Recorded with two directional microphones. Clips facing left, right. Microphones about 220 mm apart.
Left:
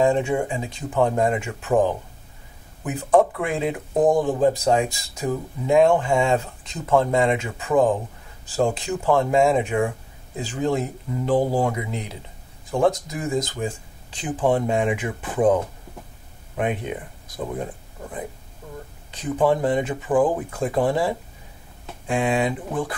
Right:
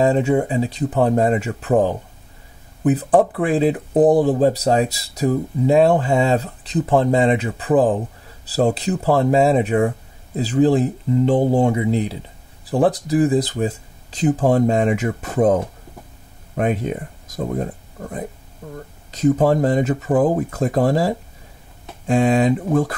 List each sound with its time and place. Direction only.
0.0 s speech: 35° right (ahead or behind)
19.0 s speech: 40° right (ahead or behind)